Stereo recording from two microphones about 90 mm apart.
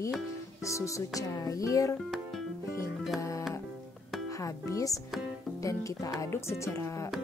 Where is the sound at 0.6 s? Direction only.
35° left (ahead or behind).